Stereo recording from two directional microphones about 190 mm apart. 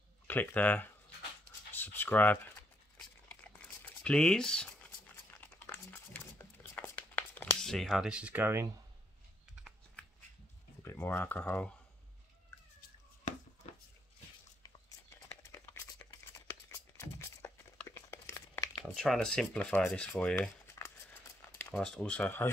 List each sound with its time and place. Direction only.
0.3 s speech: 10° left (ahead or behind)
3.0 s crumpling: 5° left (ahead or behind); by 8.6 s 10° right (ahead or behind)
10.8 s speech: 10° left (ahead or behind)
16.3 s a sound: 15° left (ahead or behind)
21.4 s speech: 10° left (ahead or behind)